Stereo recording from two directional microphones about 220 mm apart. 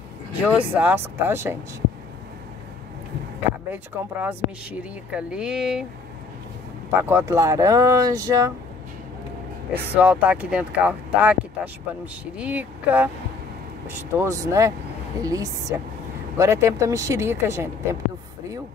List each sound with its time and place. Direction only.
0.4 s speech: 5° right (ahead or behind)
3.7 s speech: 5° right (ahead or behind)
6.9 s speech: 10° right (ahead or behind)
9.9 s speech: 5° right (ahead or behind)